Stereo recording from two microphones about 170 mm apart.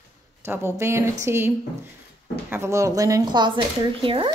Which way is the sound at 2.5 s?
15° right (ahead or behind).